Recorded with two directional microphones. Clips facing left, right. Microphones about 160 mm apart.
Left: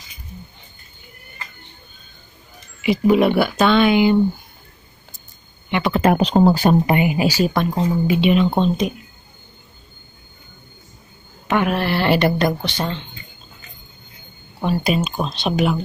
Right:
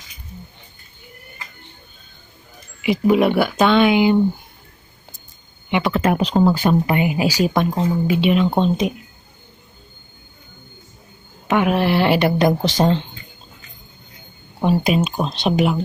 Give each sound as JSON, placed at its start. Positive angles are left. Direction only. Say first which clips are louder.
{"t": 2.8, "sound": "a woman's voice", "louder": "left 1 dB", "side_deg": -5}
{"t": 5.7, "sound": "speech", "louder": "right 1 dB", "side_deg": -10}
{"t": 5.9, "sound": "speech", "louder": "left 3 dB", "side_deg": 30}
{"t": 7.0, "sound": "speech", "louder": "left 1 dB", "side_deg": 0}
{"t": 7.2, "sound": "a woman's voice", "louder": "even", "side_deg": -10}
{"t": 7.7, "sound": "speech", "louder": "even", "side_deg": 5}
{"t": 8.5, "sound": "a woman's voice", "louder": "even", "side_deg": -10}
{"t": 11.4, "sound": "a woman's voice", "louder": "right 2 dB", "side_deg": -10}
{"t": 12.6, "sound": "speech", "louder": "right 8 dB", "side_deg": -40}
{"t": 14.6, "sound": "a woman's voice", "louder": "right 2 dB", "side_deg": -15}